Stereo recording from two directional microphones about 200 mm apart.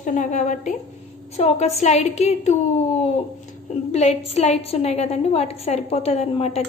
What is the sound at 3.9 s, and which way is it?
A woman's voice, 35° left (ahead or behind).